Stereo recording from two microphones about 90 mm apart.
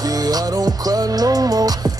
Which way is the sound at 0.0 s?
45° right (ahead or behind).